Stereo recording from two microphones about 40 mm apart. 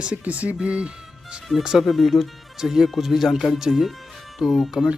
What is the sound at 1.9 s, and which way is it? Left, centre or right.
Speech, centre.